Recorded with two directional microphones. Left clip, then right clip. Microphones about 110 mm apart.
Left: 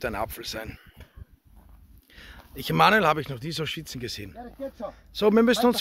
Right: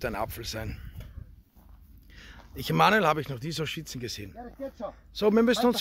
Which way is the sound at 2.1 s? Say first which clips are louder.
Left 2 dB; centre (ahead or behind).